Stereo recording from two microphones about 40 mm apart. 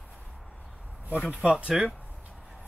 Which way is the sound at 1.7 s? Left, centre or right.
Centre.